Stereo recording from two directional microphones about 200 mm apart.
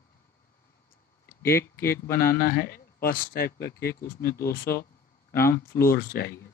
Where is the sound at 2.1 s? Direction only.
45° left (ahead or behind).